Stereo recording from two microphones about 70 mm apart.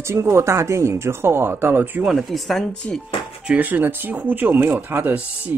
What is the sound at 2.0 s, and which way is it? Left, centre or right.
Speech, centre.